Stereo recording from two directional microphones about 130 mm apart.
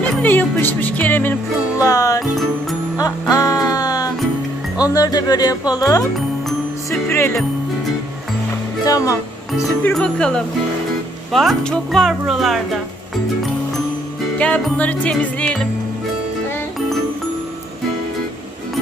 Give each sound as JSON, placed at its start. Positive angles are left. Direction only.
{"t": 0.0, "sound": "speech", "side_deg": 15}
{"t": 1.8, "sound": "music", "side_deg": 25}
{"t": 4.7, "sound": "speech", "side_deg": 30}
{"t": 6.9, "sound": "music", "side_deg": 20}
{"t": 8.8, "sound": "music", "side_deg": 25}
{"t": 9.9, "sound": "a woman's voice", "side_deg": 5}
{"t": 14.4, "sound": "speech", "side_deg": 10}